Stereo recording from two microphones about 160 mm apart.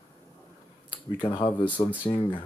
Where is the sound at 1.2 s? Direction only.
30° left (ahead or behind).